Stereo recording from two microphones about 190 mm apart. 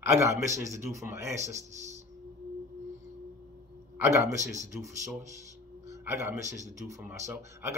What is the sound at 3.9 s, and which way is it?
Speech, 15° right (ahead or behind).